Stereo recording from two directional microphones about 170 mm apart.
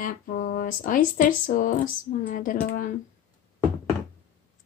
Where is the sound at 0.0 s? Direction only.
55° left (ahead or behind).